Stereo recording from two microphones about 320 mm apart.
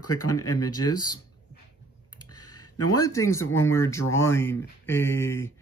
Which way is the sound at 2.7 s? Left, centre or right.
Left.